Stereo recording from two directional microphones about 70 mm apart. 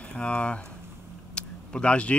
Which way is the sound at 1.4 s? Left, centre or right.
Centre.